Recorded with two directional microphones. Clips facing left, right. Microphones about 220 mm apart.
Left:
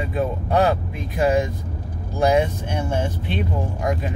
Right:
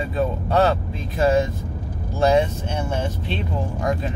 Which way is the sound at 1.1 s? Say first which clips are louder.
Right 1 dB; 15° left (ahead or behind).